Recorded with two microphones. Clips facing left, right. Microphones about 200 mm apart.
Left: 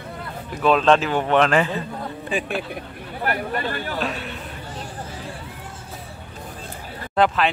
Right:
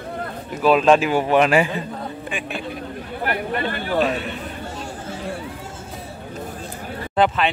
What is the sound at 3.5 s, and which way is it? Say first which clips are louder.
Speech: right 1 dB; 45° left (ahead or behind).